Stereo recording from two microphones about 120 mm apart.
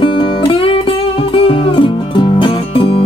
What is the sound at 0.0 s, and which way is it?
Music, 45° left (ahead or behind).